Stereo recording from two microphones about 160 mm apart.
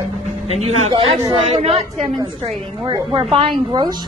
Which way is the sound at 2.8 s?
30° right (ahead or behind).